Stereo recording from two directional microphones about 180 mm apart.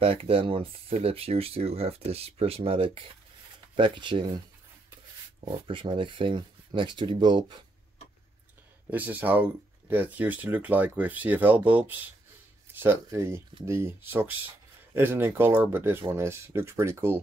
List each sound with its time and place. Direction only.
0.0 s speech: 30° right (ahead or behind)
5.4 s speech: 30° right (ahead or behind)
8.9 s speech: 10° right (ahead or behind)